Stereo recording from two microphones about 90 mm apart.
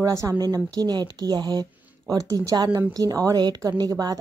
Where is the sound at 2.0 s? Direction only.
40° right (ahead or behind).